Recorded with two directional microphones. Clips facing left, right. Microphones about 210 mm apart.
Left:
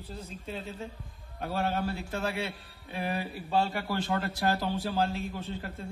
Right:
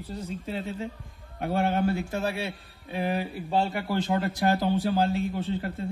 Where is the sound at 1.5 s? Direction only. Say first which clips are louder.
Right 6 dB; 55° right (ahead or behind).